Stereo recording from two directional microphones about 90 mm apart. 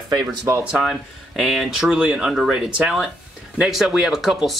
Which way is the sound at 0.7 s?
10° right (ahead or behind).